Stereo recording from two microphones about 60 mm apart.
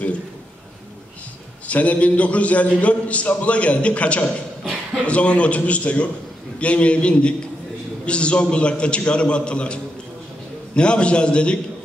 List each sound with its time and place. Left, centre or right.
1.7 s a man's voice: left